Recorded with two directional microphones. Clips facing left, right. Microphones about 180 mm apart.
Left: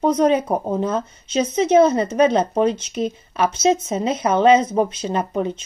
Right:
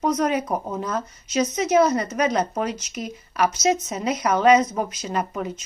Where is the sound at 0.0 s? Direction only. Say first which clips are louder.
Left 5 dB; 25° left (ahead or behind).